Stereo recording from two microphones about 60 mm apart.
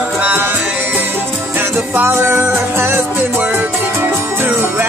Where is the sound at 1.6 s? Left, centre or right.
Right.